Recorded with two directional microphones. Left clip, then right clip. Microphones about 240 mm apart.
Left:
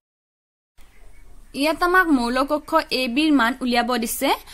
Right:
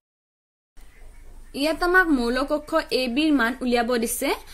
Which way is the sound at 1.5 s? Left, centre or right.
Left.